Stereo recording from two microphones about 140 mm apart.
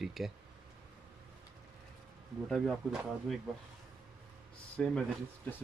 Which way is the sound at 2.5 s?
Centre (ahead or behind).